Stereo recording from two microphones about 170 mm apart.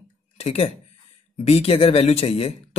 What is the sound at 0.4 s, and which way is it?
Speech, 40° left (ahead or behind).